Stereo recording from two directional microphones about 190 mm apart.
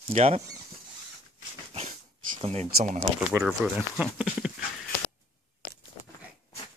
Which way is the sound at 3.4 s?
5° right (ahead or behind).